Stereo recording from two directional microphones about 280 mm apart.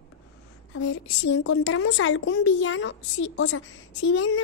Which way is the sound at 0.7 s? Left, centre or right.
Left.